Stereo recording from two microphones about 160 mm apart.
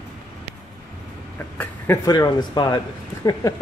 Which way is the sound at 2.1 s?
25° left (ahead or behind).